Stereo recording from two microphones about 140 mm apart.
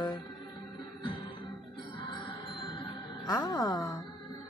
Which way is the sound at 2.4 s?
35° left (ahead or behind).